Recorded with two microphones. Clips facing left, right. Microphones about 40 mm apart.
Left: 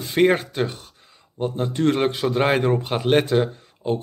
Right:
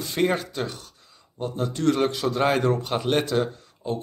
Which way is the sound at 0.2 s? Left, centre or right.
Left.